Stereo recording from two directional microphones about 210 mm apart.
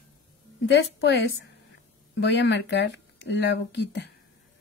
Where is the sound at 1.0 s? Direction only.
50° left (ahead or behind).